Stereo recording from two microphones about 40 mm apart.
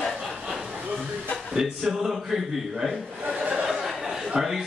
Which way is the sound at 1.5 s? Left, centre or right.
Centre.